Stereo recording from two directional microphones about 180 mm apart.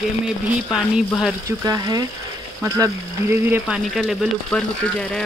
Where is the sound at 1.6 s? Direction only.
20° right (ahead or behind); by 4.6 s centre (ahead or behind).